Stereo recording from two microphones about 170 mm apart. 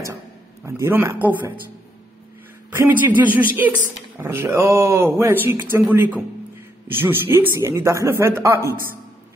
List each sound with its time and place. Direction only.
0.7 s speech: 15° right (ahead or behind)
2.7 s speech: 10° right (ahead or behind)